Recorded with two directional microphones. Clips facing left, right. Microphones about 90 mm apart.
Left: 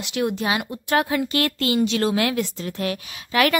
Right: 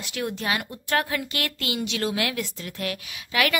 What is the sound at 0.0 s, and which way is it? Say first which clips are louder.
Speech: left 6 dB; 20° left (ahead or behind).